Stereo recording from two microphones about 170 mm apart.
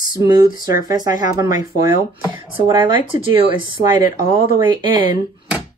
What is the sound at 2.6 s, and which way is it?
Speech, 30° right (ahead or behind).